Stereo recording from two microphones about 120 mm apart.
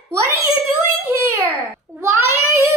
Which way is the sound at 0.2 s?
20° right (ahead or behind).